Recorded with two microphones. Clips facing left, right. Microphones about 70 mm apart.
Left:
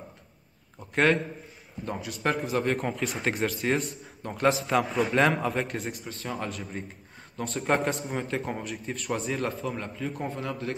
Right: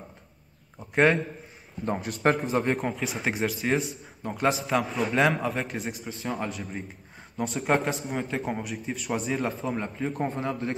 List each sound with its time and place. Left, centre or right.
0.7 s a man's voice: centre
1.9 s speech: right
2.5 s speech: centre
2.8 s a man's voice: centre
9.6 s speech: right